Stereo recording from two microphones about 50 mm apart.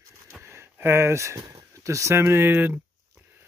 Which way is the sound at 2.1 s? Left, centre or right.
Right.